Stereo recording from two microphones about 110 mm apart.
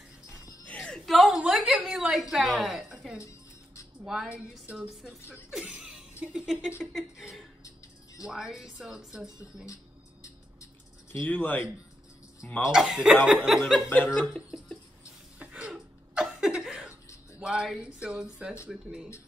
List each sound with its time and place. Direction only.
0.7 s a sound: 10° left (ahead or behind)
2.3 s a woman's voice: 5° right (ahead or behind)
5.3 s speech: 10° right (ahead or behind)
7.6 s music: 30° left (ahead or behind)
8.3 s speech: centre (ahead or behind)
10.2 s a sound: 30° left (ahead or behind)
11.2 s speech: 15° left (ahead or behind)
12.7 s speech: 5° right (ahead or behind)
13.8 s speech: 15° left (ahead or behind)
15.3 s a sound: 10° right (ahead or behind)
17.4 s speech: 5° right (ahead or behind)